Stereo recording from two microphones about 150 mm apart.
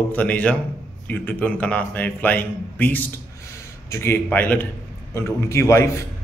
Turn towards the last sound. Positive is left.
turn(degrees=20)  # may be behind; listen again after turning